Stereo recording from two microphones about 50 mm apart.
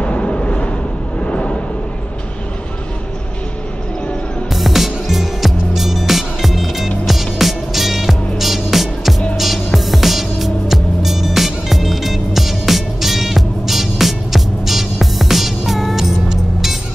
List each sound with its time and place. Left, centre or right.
0.0 s a sound: left
1.2 s vehicle: left
4.6 s music: centre